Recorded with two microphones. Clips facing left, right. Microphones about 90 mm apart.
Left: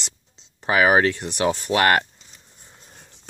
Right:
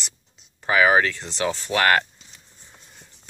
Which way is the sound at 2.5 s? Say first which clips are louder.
Left 2 dB; 55° left (ahead or behind).